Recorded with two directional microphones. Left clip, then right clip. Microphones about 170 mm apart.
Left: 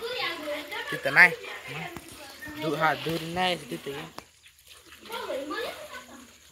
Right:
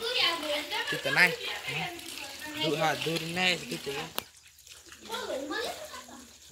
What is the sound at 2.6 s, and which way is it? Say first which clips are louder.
Speech: left 3 dB; 25° left (ahead or behind).